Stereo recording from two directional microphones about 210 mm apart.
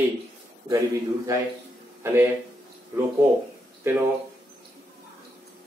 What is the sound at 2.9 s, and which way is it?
A man's voice, 10° right (ahead or behind).